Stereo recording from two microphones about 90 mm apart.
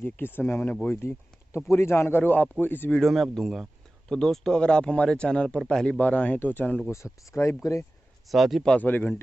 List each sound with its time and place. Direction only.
0.0 s speech: 25° left (ahead or behind)
2.9 s speech: 5° left (ahead or behind)
6.9 s speech: 35° left (ahead or behind)
8.3 s speech: centre (ahead or behind)
8.6 s speech: 20° left (ahead or behind)